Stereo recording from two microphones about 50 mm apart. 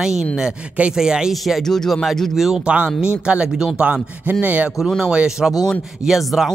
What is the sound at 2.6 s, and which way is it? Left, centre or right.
Speech, right.